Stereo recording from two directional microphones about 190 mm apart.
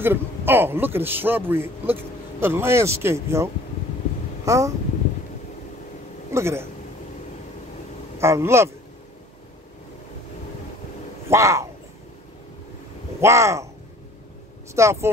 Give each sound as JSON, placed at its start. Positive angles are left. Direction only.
{"t": 0.0, "sound": "a man's voice", "side_deg": -10}
{"t": 4.5, "sound": "a man's voice", "side_deg": -15}
{"t": 6.3, "sound": "a man's voice", "side_deg": -15}
{"t": 8.2, "sound": "a man's voice", "side_deg": -15}
{"t": 11.2, "sound": "a man's voice", "side_deg": -15}
{"t": 13.2, "sound": "a man's voice", "side_deg": -15}
{"t": 14.8, "sound": "a man's voice", "side_deg": -15}